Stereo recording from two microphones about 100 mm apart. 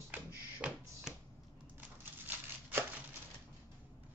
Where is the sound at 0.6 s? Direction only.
10° right (ahead or behind).